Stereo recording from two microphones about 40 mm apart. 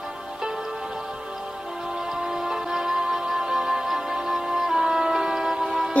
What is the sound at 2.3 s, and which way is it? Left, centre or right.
Music, centre.